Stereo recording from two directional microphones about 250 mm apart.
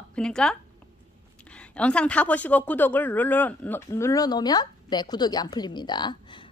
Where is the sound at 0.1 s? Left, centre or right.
Centre.